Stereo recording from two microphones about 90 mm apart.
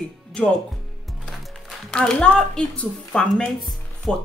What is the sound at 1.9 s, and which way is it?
A woman's voice, 10° left (ahead or behind).